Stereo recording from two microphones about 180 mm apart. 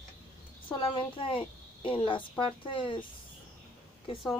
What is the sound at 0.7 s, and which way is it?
A woman's voice, 30° left (ahead or behind).